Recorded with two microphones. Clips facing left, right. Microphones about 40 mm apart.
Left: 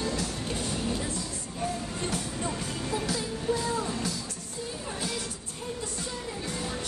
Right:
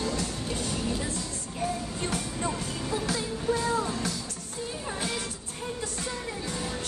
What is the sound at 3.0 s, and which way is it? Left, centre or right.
Music, right.